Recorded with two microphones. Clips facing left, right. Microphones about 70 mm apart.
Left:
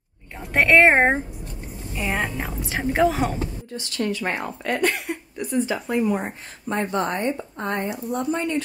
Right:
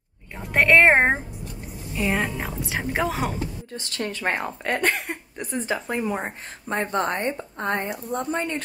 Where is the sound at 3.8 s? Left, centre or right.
Right.